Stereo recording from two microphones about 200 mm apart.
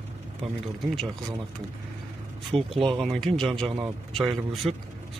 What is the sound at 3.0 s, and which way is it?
A man's voice, centre (ahead or behind).